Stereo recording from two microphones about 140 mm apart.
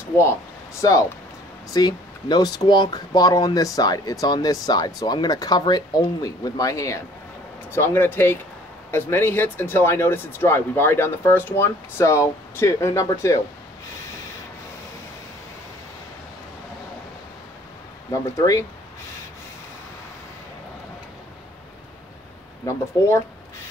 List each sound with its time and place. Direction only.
0.2 s speech: 20° left (ahead or behind)
18.1 s speech: 25° left (ahead or behind)
22.7 s speech: 20° left (ahead or behind)